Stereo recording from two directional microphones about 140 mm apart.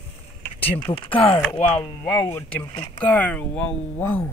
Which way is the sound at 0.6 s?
40° left (ahead or behind).